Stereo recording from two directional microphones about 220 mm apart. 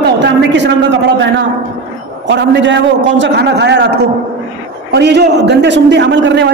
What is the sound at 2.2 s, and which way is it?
A man's voice, 55° right (ahead or behind).